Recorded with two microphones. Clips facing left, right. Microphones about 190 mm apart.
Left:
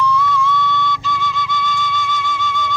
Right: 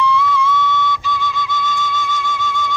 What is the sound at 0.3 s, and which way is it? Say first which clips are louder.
Flute: right 1 dB; 5° right (ahead or behind).